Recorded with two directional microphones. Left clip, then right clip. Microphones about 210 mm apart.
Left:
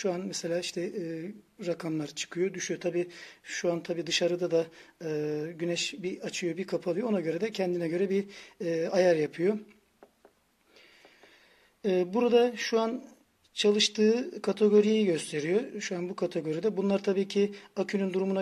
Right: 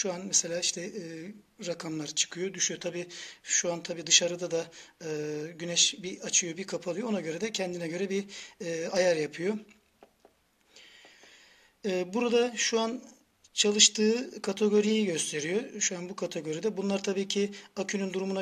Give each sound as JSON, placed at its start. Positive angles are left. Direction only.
{"t": 0.0, "sound": "speech", "side_deg": 35}
{"t": 11.8, "sound": "speech", "side_deg": 30}